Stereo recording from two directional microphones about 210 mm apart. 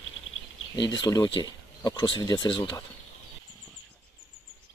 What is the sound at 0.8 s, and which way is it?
Speech, 20° left (ahead or behind).